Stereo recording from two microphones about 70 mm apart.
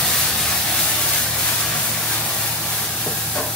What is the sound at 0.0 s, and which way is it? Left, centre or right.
Spray, centre.